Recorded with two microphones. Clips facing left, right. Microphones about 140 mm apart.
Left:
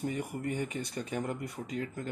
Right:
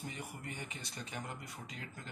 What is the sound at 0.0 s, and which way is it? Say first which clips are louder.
Speech: left 11 dB; 50° left (ahead or behind).